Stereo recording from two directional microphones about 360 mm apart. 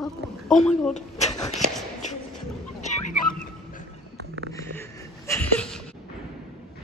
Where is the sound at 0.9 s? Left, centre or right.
Centre.